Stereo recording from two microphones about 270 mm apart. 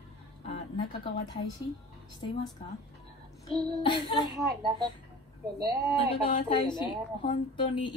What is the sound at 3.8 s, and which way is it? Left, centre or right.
Speech, centre.